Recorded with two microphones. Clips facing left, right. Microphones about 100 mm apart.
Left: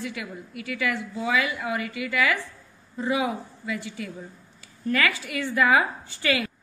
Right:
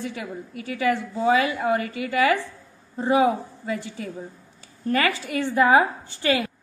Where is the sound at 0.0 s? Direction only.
35° right (ahead or behind).